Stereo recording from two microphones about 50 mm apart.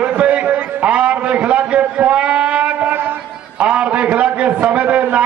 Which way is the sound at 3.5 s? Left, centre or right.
Right.